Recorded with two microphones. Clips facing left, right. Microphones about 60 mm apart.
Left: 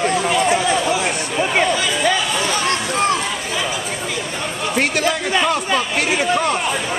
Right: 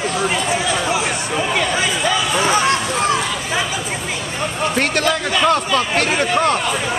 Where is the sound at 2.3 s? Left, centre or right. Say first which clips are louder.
Right 4 dB; right.